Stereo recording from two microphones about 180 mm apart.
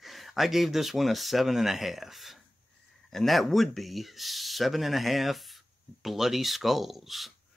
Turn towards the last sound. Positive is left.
turn(degrees=0)  # may be behind; listen again after turning